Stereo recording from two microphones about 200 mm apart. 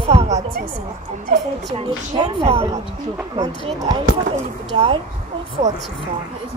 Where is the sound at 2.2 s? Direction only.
30° right (ahead or behind).